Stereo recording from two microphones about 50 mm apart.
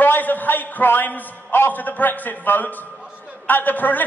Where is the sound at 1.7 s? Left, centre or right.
Left.